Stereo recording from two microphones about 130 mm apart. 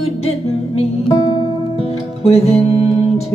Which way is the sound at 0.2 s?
50° left (ahead or behind).